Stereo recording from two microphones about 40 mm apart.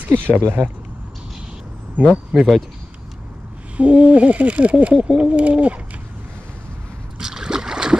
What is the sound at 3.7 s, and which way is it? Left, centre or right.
Owl, right.